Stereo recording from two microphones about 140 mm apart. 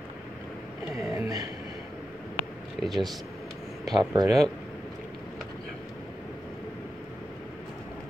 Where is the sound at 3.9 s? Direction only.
25° right (ahead or behind).